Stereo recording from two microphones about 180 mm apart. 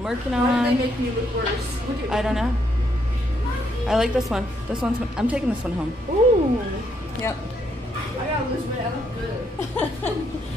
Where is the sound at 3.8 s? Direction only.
5° right (ahead or behind).